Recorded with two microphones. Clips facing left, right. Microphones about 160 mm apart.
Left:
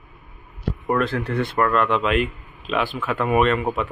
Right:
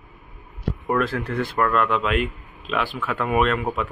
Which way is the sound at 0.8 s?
Centre (ahead or behind).